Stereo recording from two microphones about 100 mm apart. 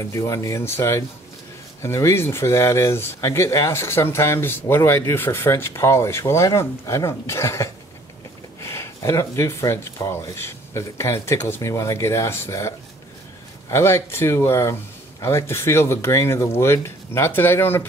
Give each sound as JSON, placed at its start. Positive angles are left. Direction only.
{"t": 0.0, "sound": "speech", "side_deg": 30}